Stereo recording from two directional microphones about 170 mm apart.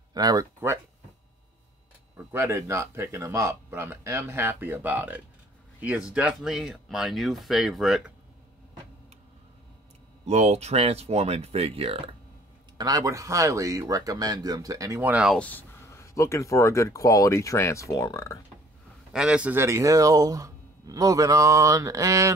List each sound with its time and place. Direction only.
0.1 s speech: 20° right (ahead or behind)
2.1 s speech: 15° right (ahead or behind)
10.2 s speech: 40° right (ahead or behind)
12.7 s speech: 20° right (ahead or behind)
15.3 s speech: 10° left (ahead or behind)
19.1 s speech: 5° right (ahead or behind)